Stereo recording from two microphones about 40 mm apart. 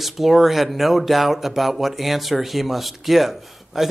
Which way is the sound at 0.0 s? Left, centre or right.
Centre.